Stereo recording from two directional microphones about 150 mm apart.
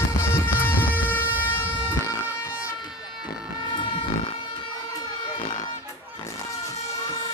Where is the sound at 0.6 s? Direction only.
10° left (ahead or behind).